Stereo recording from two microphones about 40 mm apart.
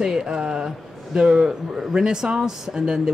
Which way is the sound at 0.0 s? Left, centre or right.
Centre.